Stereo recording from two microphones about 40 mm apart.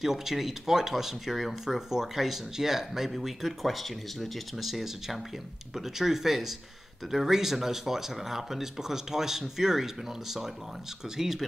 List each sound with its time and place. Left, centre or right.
0.0 s speech: centre
11.1 s speech: centre